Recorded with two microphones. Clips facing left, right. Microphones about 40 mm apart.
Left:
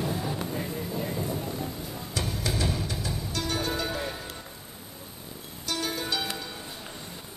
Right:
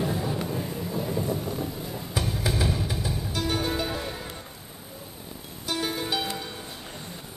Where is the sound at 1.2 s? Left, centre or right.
Centre.